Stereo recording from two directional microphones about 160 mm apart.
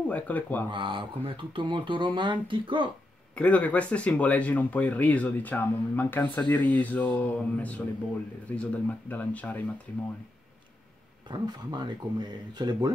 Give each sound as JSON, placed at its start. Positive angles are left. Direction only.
{"t": 0.1, "sound": "speech", "side_deg": 10}
{"t": 0.7, "sound": "speech", "side_deg": -30}
{"t": 3.3, "sound": "speech", "side_deg": 10}
{"t": 11.2, "sound": "speech", "side_deg": -30}